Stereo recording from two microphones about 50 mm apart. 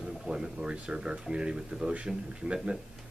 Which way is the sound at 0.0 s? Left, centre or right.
Centre.